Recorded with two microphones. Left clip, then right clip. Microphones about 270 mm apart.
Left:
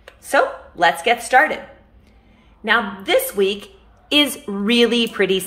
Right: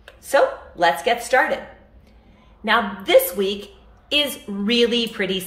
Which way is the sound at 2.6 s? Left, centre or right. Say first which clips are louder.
Left 1 dB; centre.